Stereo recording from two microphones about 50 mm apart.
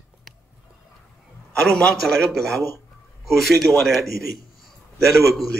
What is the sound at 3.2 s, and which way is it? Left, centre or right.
Speech, centre.